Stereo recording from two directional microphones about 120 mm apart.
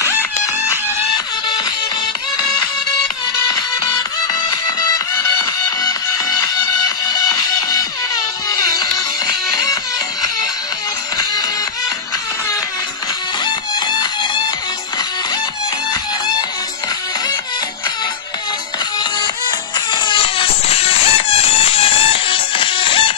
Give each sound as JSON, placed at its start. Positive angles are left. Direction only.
{"t": 4.4, "sound": "music", "side_deg": 30}
{"t": 13.5, "sound": "music", "side_deg": 40}
{"t": 19.9, "sound": "music", "side_deg": 45}